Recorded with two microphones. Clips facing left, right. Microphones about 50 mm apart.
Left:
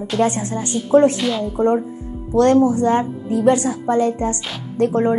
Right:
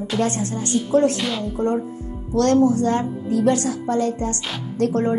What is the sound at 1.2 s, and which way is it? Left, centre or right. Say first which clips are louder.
Speech: left 4 dB; centre.